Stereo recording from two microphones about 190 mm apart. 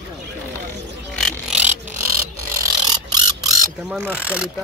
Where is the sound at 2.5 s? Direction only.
20° right (ahead or behind).